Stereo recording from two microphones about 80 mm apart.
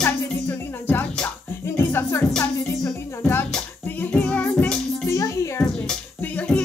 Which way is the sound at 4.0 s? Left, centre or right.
Centre.